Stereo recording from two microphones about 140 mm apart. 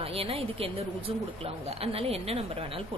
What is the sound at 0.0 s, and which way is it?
A woman's voice, 45° right (ahead or behind).